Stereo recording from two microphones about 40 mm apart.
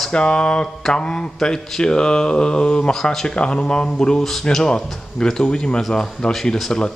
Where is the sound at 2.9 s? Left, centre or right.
Centre.